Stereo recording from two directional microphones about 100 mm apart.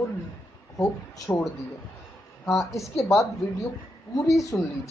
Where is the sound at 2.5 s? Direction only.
30° left (ahead or behind).